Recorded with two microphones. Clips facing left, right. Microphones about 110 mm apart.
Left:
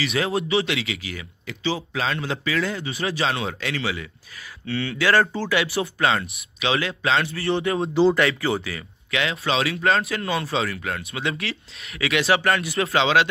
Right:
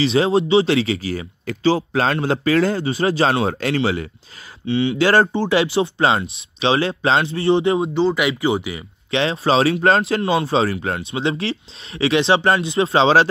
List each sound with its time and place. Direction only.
0.0 s speech: 30° right (ahead or behind)
4.6 s speech: 20° right (ahead or behind)
7.9 s speech: centre (ahead or behind)
8.3 s speech: 15° right (ahead or behind)
9.1 s speech: 30° right (ahead or behind)